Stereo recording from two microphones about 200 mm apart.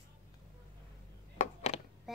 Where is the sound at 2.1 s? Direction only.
Centre (ahead or behind).